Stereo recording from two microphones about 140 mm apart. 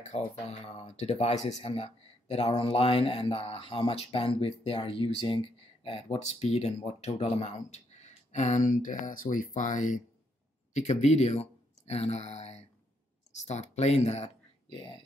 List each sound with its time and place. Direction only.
0.0 s speech: 50° left (ahead or behind)
14.7 s speech: 35° left (ahead or behind)